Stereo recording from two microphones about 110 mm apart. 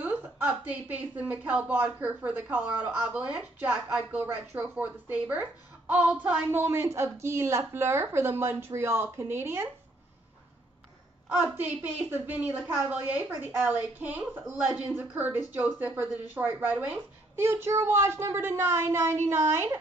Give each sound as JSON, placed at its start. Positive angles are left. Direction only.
{"t": 0.0, "sound": "a woman's voice", "side_deg": -15}
{"t": 11.5, "sound": "a woman's voice", "side_deg": -15}